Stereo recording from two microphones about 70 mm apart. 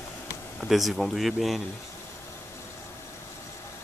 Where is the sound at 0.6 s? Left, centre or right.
Centre.